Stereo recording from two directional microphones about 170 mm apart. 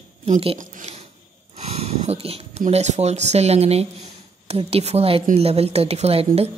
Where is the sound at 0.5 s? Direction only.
50° right (ahead or behind).